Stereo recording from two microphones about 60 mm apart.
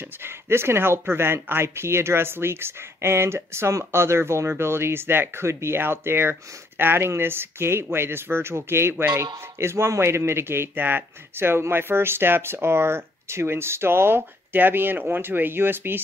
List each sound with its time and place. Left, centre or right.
0.0 s speech: right
8.9 s speech: right
9.2 s speech: right